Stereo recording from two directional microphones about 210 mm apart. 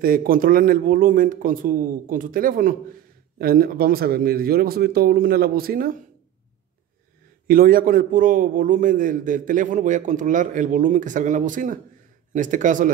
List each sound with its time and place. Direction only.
0.0 s a man's voice: 40° right (ahead or behind)
7.4 s a man's voice: 45° right (ahead or behind)